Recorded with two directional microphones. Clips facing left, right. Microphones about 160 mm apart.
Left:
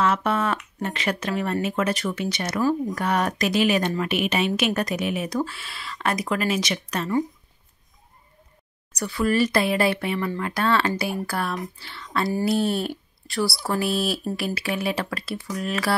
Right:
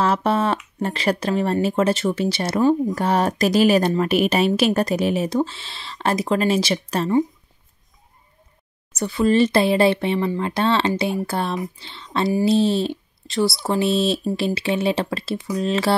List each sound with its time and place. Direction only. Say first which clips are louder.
0.0 s speech: right 3 dB; 30° right (ahead or behind)
8.9 s speech: right 5 dB; 25° right (ahead or behind)